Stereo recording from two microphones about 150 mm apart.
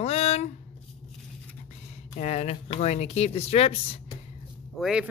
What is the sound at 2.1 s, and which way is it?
Speech, 50° left (ahead or behind).